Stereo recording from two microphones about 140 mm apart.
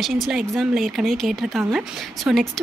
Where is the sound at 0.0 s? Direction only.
Centre (ahead or behind).